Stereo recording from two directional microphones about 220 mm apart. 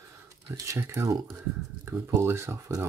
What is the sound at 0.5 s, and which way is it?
Speech, 15° right (ahead or behind).